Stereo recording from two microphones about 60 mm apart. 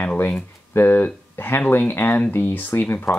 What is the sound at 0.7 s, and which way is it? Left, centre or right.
Speech, left.